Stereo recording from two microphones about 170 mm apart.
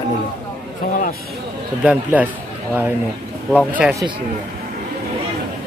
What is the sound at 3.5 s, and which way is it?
Speech, 5° right (ahead or behind).